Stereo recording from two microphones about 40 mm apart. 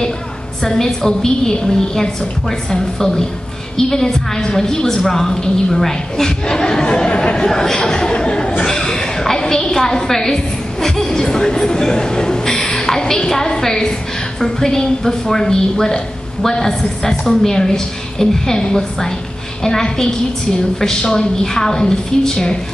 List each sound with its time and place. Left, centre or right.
0.7 s a woman's voice: centre